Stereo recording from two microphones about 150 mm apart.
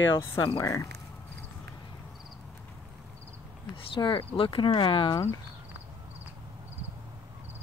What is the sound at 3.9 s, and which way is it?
Speech, 35° left (ahead or behind).